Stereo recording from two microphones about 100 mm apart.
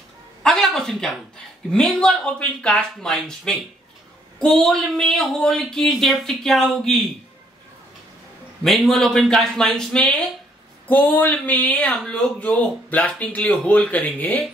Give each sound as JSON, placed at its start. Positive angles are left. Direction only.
{"t": 0.4, "sound": "a sound", "side_deg": 5}
{"t": 1.7, "sound": "speech", "side_deg": 5}
{"t": 8.6, "sound": "speech", "side_deg": 0}
{"t": 10.9, "sound": "speech", "side_deg": 15}